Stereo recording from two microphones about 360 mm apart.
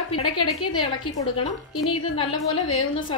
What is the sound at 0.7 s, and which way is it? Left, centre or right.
A woman's voice, centre.